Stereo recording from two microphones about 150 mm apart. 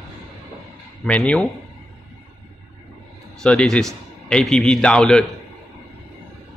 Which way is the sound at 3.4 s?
5° left (ahead or behind).